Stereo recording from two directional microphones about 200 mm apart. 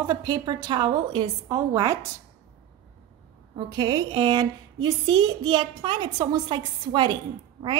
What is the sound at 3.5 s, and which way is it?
A woman's voice, 20° right (ahead or behind).